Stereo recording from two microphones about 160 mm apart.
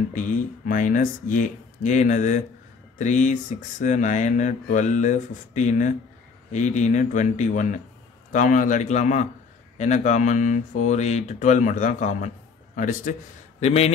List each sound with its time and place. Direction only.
0.1 s speech: 55° left (ahead or behind)
13.6 s a man's voice: 40° left (ahead or behind)